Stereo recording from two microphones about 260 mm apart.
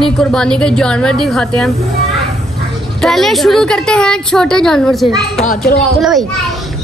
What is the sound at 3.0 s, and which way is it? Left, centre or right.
Speech, centre.